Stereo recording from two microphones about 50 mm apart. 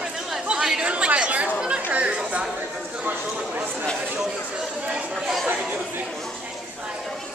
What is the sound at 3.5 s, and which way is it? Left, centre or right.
Chatter, right.